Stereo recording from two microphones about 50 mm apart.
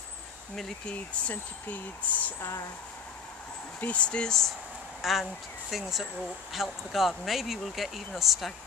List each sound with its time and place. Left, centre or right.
0.8 s speech: left
3.8 s speech: left
5.0 s speech: centre